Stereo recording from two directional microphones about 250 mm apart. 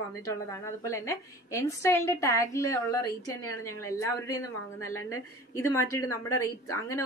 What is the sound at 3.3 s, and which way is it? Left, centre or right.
Speech, left.